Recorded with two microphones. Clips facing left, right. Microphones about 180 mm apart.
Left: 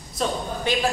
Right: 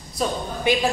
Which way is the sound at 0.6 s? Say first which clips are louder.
Right 3 dB; 15° right (ahead or behind).